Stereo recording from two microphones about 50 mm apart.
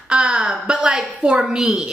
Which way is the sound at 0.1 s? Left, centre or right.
Centre.